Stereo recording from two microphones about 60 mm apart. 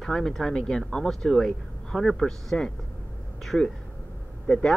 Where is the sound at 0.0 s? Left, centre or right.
Centre.